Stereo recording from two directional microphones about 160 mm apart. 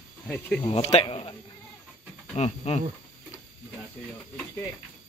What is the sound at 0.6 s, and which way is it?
Speech, 40° left (ahead or behind).